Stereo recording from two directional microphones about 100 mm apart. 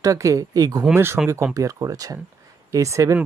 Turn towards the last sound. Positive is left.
turn(degrees=-30)  # may be behind; listen again after turning